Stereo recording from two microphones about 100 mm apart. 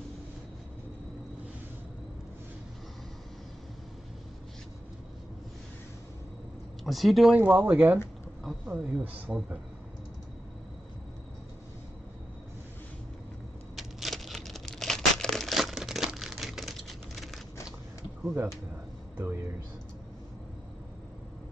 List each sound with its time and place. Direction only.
6.8 s speech: centre (ahead or behind)
7.3 s speech: 15° right (ahead or behind)
13.7 s crumpling: centre (ahead or behind)
18.2 s speech: 20° right (ahead or behind)